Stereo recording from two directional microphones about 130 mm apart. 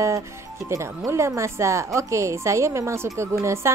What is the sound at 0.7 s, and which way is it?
Speech, 25° right (ahead or behind).